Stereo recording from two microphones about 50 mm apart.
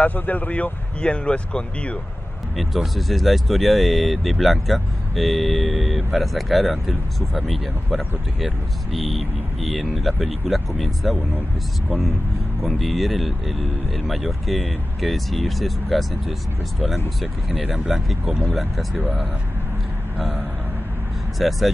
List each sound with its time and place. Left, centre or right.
0.0 s speech: left
2.5 s speech: centre
12.6 s speech: centre
17.6 s speech: centre
17.9 s speech: centre
20.2 s speech: centre